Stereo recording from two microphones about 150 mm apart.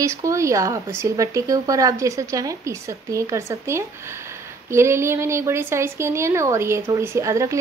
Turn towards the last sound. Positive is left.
turn(degrees=-20)  # may be behind; listen again after turning